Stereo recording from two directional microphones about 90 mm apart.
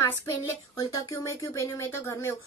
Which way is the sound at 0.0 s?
40° left (ahead or behind).